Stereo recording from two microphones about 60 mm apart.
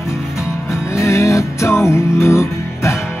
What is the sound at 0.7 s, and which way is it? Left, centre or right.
Music, left.